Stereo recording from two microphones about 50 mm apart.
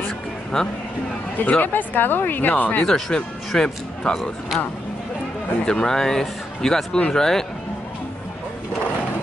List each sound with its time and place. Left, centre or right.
0.5 s speech: centre
1.4 s speech: left
3.5 s speech: centre
5.7 s speech: centre